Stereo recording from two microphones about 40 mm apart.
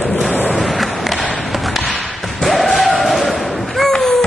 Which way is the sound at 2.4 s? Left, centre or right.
Centre.